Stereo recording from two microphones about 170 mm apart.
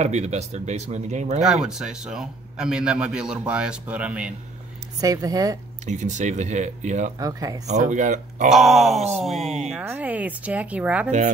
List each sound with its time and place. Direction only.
0.0 s speech: 40° right (ahead or behind)
1.4 s a man's voice: 5° right (ahead or behind)
5.0 s speech: 20° right (ahead or behind)
5.9 s speech: 45° right (ahead or behind)
7.2 s speech: 20° right (ahead or behind)
7.9 s speech: 45° right (ahead or behind)
8.5 s a man's voice: centre (ahead or behind)
11.1 s speech: 45° right (ahead or behind)